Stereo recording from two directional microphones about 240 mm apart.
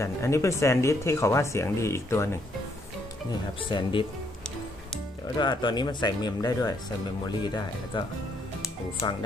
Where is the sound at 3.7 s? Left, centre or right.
Left.